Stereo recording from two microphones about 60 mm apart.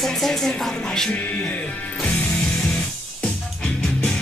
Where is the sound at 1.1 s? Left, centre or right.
Left.